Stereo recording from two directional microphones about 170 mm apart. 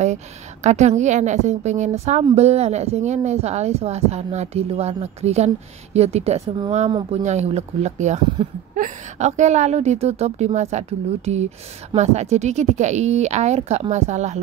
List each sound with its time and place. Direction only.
0.7 s a woman's voice: 45° right (ahead or behind); by 7.2 s 30° right (ahead or behind)
7.2 s speech: 40° right (ahead or behind)
8.4 s speech: 30° right (ahead or behind)
8.7 s speech: 45° right (ahead or behind)